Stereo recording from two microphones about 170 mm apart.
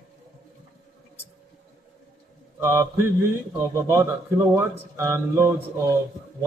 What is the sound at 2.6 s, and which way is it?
Speech, 15° right (ahead or behind).